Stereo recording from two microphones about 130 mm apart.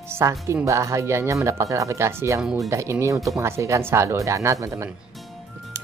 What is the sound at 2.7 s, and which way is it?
Speech, 20° right (ahead or behind).